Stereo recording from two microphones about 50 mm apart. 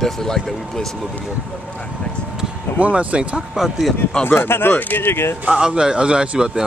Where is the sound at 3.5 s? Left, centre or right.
Centre.